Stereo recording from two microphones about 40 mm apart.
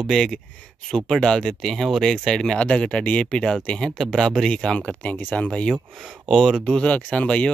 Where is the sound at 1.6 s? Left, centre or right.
Centre.